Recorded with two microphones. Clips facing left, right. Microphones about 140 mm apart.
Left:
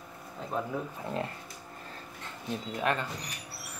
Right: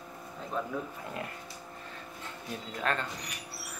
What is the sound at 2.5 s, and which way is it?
Speech, 15° left (ahead or behind).